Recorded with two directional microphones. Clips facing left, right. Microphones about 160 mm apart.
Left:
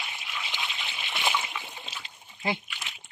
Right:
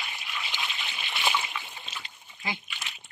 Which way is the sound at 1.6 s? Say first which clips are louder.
Left 1 dB; 5° left (ahead or behind).